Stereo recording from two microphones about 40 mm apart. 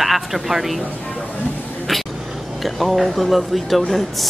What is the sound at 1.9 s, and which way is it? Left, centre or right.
A man's voice, centre.